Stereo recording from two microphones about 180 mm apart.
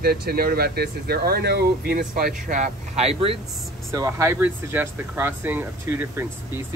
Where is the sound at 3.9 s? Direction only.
15° right (ahead or behind).